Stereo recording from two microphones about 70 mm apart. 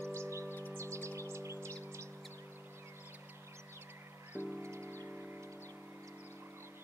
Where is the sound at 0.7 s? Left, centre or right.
Right.